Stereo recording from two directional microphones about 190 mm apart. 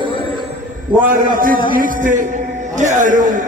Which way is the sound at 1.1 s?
45° right (ahead or behind).